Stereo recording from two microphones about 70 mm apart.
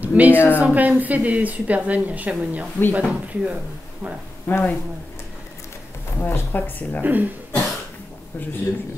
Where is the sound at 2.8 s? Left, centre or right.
Left.